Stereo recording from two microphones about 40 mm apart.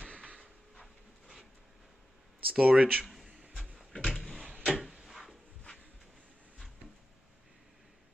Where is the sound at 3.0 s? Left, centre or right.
Centre.